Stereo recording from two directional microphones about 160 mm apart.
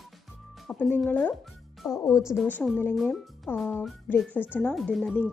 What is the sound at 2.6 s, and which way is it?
Speech, 10° left (ahead or behind).